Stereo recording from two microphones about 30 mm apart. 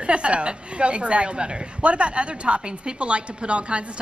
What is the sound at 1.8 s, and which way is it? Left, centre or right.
A woman's voice, right.